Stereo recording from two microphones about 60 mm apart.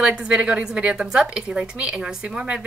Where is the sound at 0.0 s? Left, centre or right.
Centre.